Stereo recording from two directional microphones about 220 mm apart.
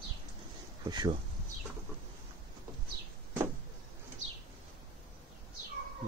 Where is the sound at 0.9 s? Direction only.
20° right (ahead or behind).